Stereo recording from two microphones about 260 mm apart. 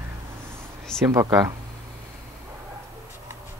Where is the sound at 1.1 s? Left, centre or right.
Centre.